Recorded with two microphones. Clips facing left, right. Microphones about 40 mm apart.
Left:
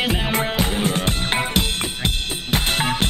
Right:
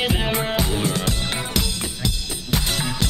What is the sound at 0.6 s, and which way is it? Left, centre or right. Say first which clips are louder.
Drum kit: left 2 dB; left.